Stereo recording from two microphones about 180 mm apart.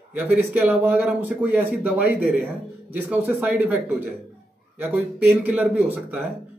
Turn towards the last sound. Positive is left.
turn(degrees=-10)  # may be behind; listen again after turning